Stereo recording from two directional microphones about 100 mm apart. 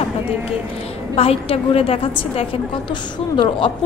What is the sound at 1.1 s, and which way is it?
A woman's voice, 75° left (ahead or behind).